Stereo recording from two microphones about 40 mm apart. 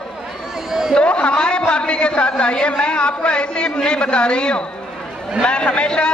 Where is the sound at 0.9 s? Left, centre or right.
Left.